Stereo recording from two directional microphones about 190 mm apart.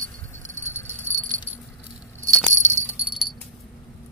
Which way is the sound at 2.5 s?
40° right (ahead or behind).